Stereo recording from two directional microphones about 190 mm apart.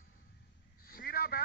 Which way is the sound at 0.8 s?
50° left (ahead or behind).